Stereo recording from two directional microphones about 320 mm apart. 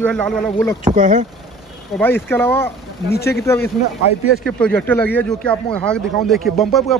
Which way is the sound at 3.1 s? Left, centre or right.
Left.